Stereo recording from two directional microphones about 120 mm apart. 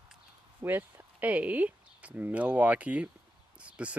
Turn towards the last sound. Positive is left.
turn(degrees=-10)  # may be behind; listen again after turning